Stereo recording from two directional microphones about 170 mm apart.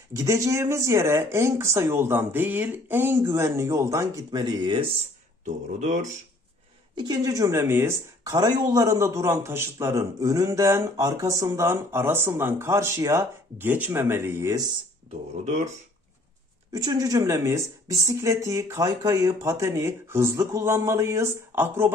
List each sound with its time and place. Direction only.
0.1 s speech: 20° right (ahead or behind)
5.4 s speech: 45° right (ahead or behind)
7.0 s speech: 20° right (ahead or behind)
15.0 s speech: 45° right (ahead or behind)
16.7 s speech: 20° right (ahead or behind)